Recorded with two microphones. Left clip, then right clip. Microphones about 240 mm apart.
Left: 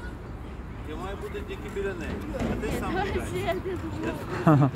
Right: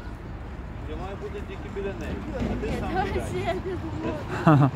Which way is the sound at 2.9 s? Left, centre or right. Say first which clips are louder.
Right 2 dB; centre.